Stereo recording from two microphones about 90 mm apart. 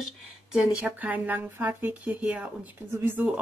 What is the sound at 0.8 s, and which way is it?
A woman's voice, 20° right (ahead or behind).